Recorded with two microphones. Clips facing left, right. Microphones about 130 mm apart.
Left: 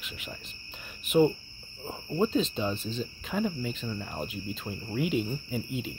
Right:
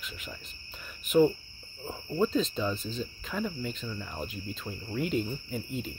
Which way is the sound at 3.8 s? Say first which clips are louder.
Left 3 dB; 30° left (ahead or behind).